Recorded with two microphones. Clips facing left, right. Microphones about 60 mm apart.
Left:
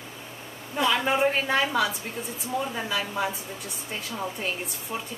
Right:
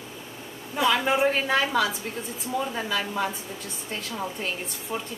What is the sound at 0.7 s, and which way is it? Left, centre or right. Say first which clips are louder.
A woman's voice: right 1 dB; centre.